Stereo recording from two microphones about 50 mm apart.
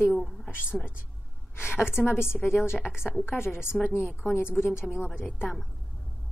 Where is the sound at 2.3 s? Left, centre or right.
Left.